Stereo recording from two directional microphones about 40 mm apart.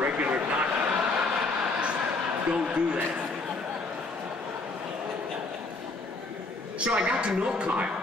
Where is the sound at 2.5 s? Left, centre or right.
Right.